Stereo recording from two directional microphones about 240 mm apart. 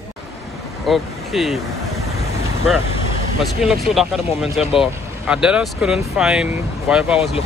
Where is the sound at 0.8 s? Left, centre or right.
Centre.